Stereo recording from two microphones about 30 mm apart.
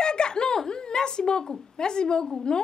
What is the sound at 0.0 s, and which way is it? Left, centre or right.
Laughter, left.